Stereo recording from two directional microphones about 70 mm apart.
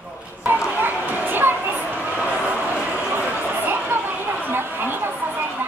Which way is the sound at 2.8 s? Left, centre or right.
Right.